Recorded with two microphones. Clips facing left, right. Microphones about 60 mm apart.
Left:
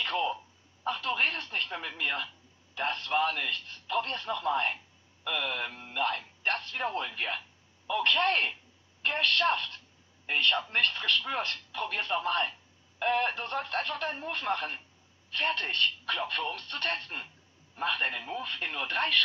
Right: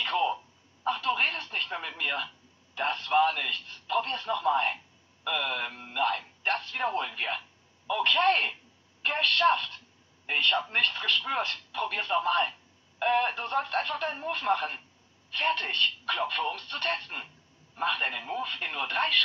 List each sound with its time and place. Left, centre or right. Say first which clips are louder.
0.0 s telephone: right 3 dB; centre
0.8 s a woman's voice: right 2 dB; centre
4.0 s speech: right 4 dB; centre
7.0 s a man's voice: right 2 dB; centre